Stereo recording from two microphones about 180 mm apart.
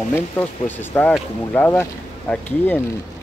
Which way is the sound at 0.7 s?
10° left (ahead or behind).